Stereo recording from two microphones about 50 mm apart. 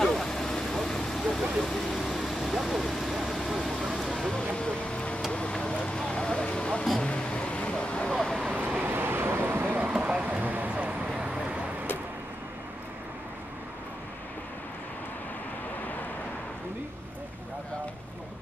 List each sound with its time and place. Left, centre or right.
0.0 s vehicle: centre
7.0 s a sound: centre
8.4 s vehicle: right
8.8 s vehicle: right
9.7 s vehicle: right
11.1 s vehicle: centre